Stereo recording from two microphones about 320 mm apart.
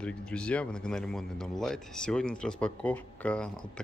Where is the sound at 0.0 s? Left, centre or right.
Centre.